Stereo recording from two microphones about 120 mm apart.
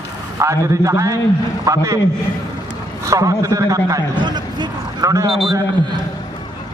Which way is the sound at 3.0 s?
30° right (ahead or behind).